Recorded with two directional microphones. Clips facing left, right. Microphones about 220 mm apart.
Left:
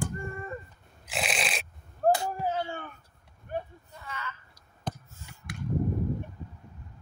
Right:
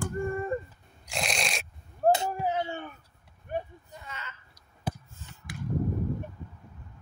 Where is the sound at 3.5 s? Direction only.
20° right (ahead or behind).